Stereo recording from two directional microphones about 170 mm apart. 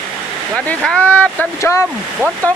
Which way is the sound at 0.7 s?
5° left (ahead or behind).